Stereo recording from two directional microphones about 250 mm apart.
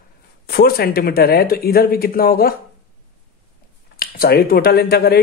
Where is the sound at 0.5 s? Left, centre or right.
Left.